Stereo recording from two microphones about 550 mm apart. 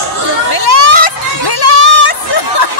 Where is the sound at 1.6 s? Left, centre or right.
Left.